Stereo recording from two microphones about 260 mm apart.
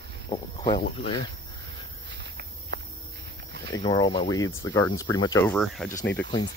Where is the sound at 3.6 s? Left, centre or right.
Centre.